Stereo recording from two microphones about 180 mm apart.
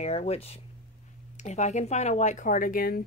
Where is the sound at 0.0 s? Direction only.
35° left (ahead or behind).